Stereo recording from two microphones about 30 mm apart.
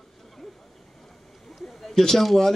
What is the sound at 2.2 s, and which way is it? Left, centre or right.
Speech, centre.